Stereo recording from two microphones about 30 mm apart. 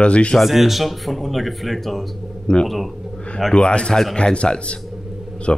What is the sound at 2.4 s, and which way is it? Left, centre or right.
Speech, left.